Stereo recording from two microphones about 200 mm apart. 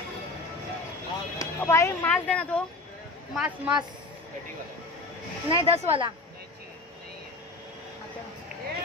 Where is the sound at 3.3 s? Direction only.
10° right (ahead or behind).